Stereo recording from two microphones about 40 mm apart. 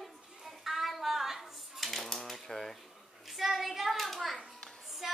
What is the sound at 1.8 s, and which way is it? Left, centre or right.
Typewriter, centre.